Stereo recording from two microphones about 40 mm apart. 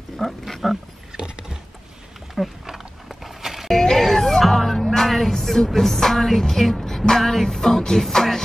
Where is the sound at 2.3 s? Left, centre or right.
Centre.